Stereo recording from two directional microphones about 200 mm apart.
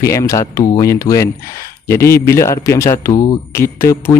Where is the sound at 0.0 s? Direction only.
15° left (ahead or behind).